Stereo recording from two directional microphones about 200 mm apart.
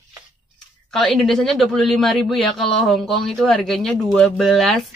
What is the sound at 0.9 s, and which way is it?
Speech, centre (ahead or behind).